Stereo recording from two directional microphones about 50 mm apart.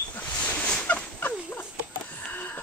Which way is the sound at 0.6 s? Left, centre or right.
Left.